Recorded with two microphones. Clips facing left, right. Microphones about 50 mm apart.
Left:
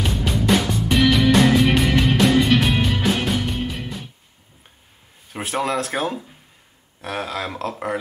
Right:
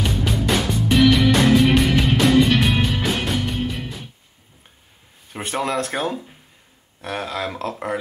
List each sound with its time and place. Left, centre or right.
0.0 s music: centre
5.3 s speech: centre